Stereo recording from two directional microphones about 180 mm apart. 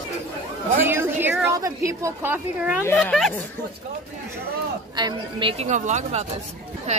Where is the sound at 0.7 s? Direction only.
10° right (ahead or behind).